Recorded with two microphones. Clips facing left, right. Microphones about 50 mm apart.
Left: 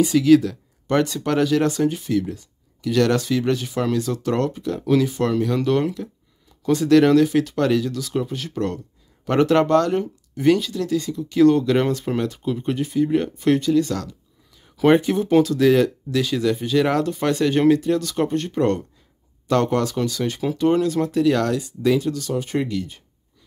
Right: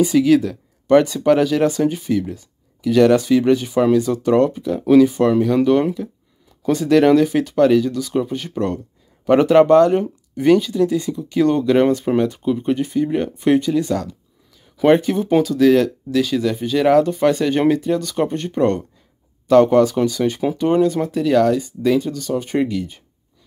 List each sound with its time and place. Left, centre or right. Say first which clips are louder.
0.0 s speech: right 1 dB; centre
10.3 s speech: right 4 dB; centre
14.8 s speech: right 2 dB; centre